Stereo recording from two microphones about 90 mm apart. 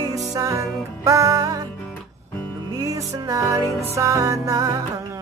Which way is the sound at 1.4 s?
45° right (ahead or behind).